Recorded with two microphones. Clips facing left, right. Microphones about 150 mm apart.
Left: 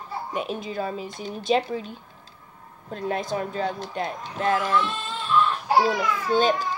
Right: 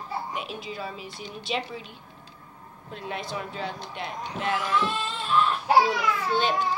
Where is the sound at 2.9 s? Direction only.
45° left (ahead or behind).